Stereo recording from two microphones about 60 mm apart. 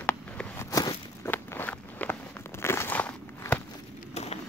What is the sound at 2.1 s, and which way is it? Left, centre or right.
Crumpling, left.